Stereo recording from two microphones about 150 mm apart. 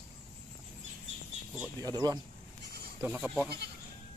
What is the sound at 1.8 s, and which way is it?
Speech, 25° right (ahead or behind).